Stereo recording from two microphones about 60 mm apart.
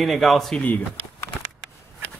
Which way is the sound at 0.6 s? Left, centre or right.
Left.